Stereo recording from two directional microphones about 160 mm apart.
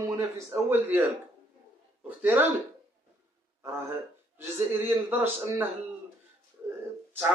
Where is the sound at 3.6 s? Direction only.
15° right (ahead or behind).